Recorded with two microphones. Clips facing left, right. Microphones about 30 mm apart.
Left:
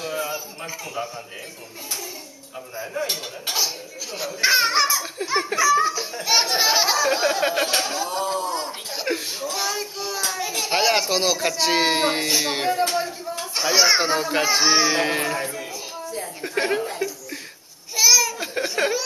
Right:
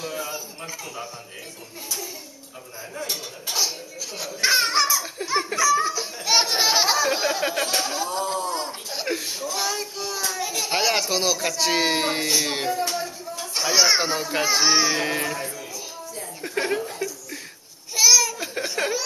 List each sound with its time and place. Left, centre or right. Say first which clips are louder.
0.0 s a man's voice: left 3 dB; centre
2.8 s a child's voice: left 6 dB; centre
4.2 s a child's voice: left 2 dB; centre
12.9 s speech: left 4 dB; left
13.6 s a child's voice: left 1 dB; centre
17.9 s a sound: even; centre